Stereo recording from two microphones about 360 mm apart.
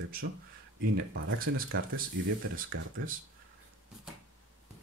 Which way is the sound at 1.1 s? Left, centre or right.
Right.